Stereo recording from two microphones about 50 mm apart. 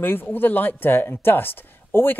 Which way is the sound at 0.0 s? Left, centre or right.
Left.